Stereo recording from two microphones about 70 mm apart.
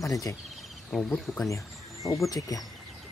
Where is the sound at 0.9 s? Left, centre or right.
Centre.